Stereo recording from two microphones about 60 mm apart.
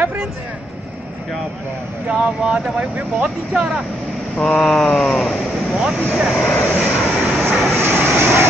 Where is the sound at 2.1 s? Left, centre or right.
Centre.